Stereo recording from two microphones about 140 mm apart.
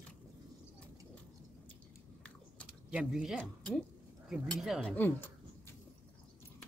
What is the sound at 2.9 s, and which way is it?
Speech, 10° right (ahead or behind).